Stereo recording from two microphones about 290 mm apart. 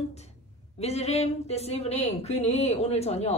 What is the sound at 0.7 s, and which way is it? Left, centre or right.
Speech, left.